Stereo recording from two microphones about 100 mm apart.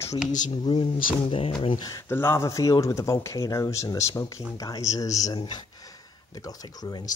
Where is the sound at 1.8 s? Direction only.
30° left (ahead or behind); by 5.6 s 50° left (ahead or behind).